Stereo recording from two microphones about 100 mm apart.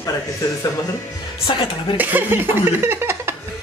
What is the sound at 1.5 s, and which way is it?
Speech, 55° left (ahead or behind).